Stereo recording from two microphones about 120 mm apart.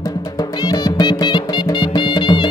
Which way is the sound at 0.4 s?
35° left (ahead or behind).